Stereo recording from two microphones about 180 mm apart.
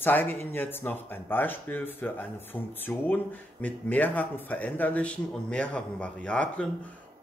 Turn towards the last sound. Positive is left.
turn(degrees=5)  # may be behind; listen again after turning